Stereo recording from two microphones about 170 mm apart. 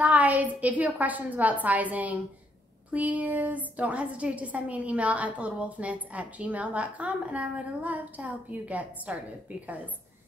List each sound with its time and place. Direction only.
0.0 s a woman's voice: 10° right (ahead or behind)